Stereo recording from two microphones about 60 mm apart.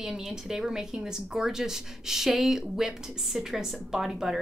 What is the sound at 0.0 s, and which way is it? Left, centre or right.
A woman's voice, centre.